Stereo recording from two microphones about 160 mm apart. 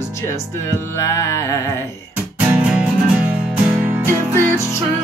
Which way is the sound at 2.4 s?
5° right (ahead or behind).